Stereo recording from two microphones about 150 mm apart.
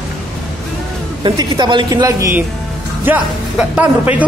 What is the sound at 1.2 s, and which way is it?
A woman's voice, 30° right (ahead or behind).